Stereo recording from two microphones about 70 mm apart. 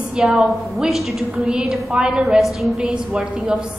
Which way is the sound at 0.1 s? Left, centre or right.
Centre.